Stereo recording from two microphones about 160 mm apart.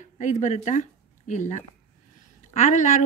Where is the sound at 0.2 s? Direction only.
50° left (ahead or behind).